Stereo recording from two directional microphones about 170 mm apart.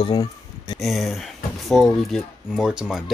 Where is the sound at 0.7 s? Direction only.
Centre (ahead or behind).